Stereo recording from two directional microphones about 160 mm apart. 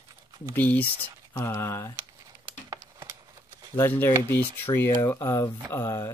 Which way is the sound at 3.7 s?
15° left (ahead or behind).